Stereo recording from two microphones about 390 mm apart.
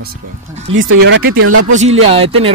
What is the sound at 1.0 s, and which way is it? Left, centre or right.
Speech, right.